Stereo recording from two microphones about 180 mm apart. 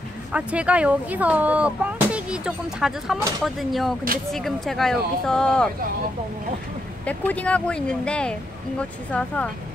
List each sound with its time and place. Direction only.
0.3 s speech: 5° right (ahead or behind)
7.1 s speech: 10° left (ahead or behind)